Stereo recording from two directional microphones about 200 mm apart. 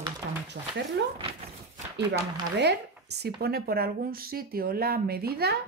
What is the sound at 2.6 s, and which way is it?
Speech, 55° right (ahead or behind).